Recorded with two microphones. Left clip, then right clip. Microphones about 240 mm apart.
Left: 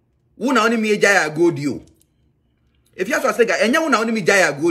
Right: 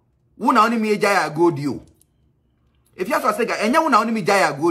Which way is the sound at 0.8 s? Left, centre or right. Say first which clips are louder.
Left 3 dB; centre.